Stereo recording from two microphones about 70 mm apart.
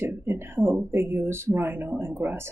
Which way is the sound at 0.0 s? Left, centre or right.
Right.